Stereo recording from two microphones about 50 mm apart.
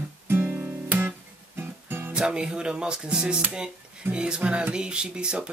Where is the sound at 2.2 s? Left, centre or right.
Centre.